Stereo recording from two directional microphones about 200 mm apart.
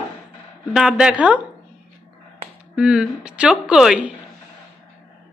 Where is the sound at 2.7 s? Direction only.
5° right (ahead or behind).